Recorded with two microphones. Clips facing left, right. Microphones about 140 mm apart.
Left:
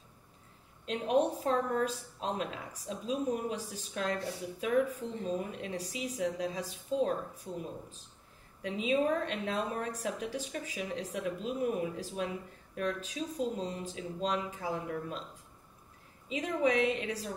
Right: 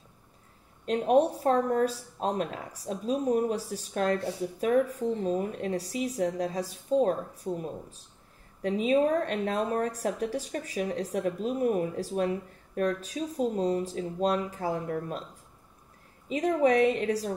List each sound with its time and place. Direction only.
0.8 s a woman's voice: 40° right (ahead or behind)
8.6 s a woman's voice: 45° right (ahead or behind)
16.3 s a woman's voice: 40° right (ahead or behind)